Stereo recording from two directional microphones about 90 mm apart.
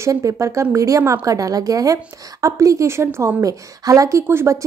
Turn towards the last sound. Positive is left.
turn(degrees=-30)  # may be behind; listen again after turning